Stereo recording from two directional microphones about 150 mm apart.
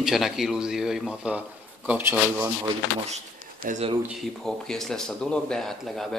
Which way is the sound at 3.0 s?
55° right (ahead or behind).